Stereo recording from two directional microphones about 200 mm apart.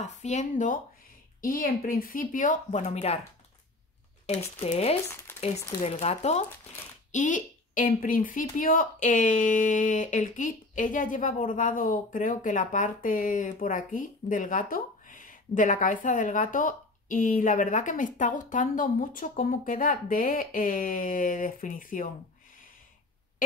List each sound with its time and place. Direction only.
0.0 s speech: 35° left (ahead or behind)
4.3 s speech: 30° left (ahead or behind)
5.0 s speech: 10° left (ahead or behind)
5.8 s speech: 35° left (ahead or behind)